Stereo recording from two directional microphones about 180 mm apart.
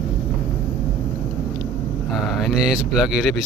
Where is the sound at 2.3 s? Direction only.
Centre (ahead or behind).